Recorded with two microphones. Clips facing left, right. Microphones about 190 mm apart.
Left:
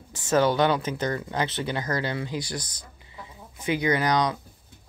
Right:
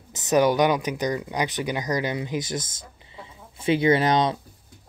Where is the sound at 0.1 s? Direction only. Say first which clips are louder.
Right 2 dB; 20° right (ahead or behind).